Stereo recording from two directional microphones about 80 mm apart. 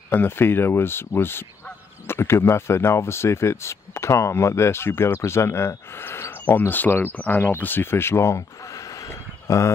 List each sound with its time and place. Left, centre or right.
0.1 s speech: left